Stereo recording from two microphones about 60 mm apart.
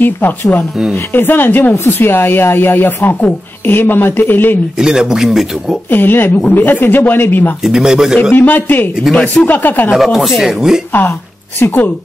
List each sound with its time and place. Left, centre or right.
0.0 s speech: left
4.7 s a man's voice: centre
5.9 s speech: left
7.6 s a man's voice: centre
8.2 s speech: left
9.1 s speech: centre
9.5 s speech: left
9.9 s speech: centre
10.9 s speech: left